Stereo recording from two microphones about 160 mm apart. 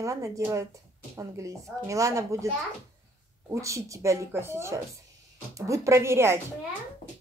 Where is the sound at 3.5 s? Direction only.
20° right (ahead or behind).